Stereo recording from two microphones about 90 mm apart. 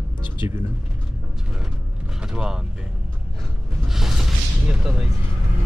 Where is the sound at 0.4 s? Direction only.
30° right (ahead or behind).